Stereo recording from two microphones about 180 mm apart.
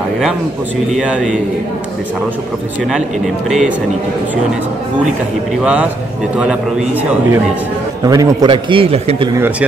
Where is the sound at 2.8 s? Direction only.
Centre (ahead or behind).